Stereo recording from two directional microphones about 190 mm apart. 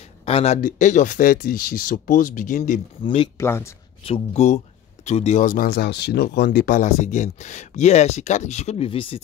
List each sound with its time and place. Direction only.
0.2 s speech: 30° left (ahead or behind)
3.0 s speech: 30° left (ahead or behind)
3.3 s speech: 15° left (ahead or behind)
4.0 s speech: 30° left (ahead or behind)